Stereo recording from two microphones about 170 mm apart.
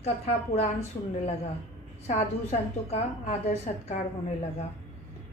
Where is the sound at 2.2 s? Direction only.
40° left (ahead or behind).